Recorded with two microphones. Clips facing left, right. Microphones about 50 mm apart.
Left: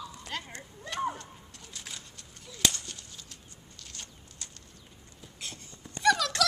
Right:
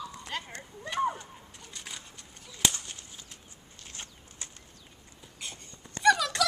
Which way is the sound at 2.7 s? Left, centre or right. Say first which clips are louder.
Even; centre.